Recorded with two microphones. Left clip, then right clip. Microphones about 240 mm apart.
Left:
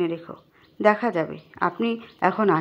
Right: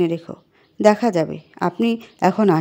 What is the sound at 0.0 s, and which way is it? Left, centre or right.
A woman's voice, right.